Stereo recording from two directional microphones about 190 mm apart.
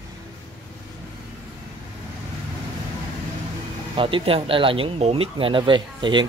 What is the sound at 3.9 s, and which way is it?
Speech, 25° right (ahead or behind).